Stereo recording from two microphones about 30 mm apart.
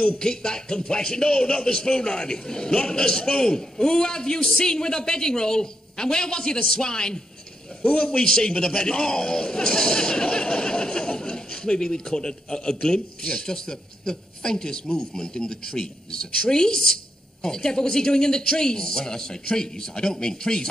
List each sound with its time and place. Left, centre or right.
0.2 s speech: left
1.7 s speech: left
7.8 s a man's voice: left
8.2 s speech: left